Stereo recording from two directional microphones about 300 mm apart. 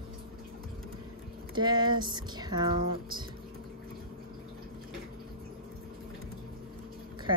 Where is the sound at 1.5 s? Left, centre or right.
Centre.